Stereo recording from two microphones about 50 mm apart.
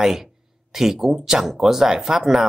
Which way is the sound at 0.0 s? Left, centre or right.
Centre.